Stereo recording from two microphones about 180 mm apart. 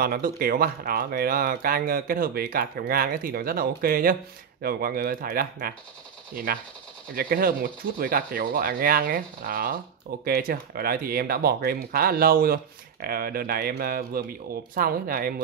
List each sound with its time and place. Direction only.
0.0 s speech: 55° right (ahead or behind)